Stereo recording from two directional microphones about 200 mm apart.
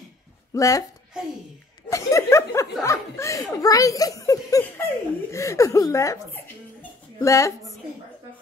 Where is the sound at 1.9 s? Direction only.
15° left (ahead or behind).